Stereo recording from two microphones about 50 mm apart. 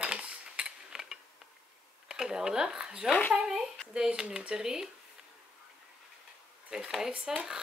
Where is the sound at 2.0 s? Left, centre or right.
Centre.